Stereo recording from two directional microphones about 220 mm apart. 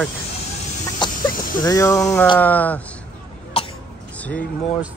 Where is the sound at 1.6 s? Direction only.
15° left (ahead or behind).